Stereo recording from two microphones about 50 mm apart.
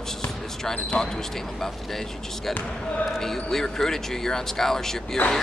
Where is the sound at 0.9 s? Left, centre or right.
Centre.